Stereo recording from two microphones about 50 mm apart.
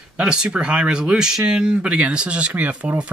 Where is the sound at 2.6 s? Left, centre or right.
Right.